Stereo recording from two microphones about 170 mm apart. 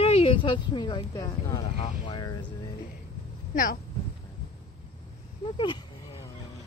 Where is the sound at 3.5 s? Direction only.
50° left (ahead or behind).